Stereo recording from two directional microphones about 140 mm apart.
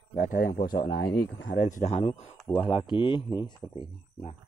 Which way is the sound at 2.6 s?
35° left (ahead or behind).